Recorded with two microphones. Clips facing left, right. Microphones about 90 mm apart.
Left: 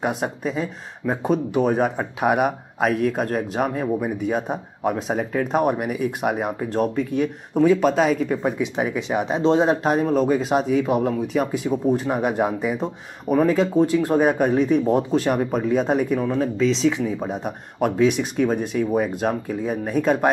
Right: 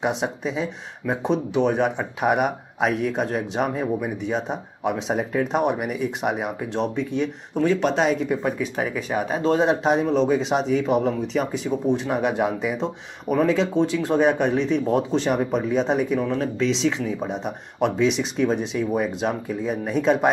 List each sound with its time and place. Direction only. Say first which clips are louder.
0.0 s speech: even; 5° left (ahead or behind)
8.4 s speech: left 2 dB; 15° left (ahead or behind)
9.6 s speech: left 1 dB; centre (ahead or behind)
15.1 s speech: left 1 dB; centre (ahead or behind)